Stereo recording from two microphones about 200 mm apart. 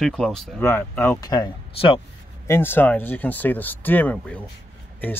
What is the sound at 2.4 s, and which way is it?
Speech, 10° left (ahead or behind).